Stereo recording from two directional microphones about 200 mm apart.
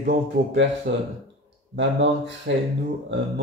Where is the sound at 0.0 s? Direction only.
65° right (ahead or behind).